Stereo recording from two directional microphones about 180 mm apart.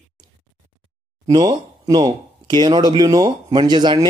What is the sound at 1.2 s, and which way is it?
Speech, 20° right (ahead or behind).